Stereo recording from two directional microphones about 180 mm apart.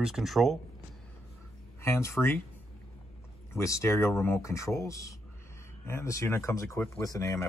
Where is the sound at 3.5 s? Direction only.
15° left (ahead or behind).